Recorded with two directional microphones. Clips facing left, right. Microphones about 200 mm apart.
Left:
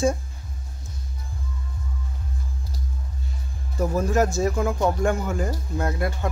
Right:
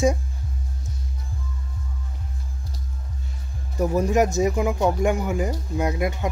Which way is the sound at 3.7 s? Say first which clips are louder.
Right 2 dB; 15° right (ahead or behind).